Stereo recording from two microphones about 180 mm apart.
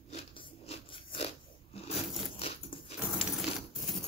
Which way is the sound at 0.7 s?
30° left (ahead or behind).